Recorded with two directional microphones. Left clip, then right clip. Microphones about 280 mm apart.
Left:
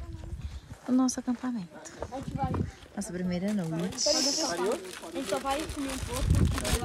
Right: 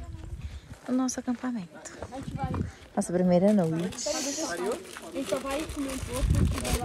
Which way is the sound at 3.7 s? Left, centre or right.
Left.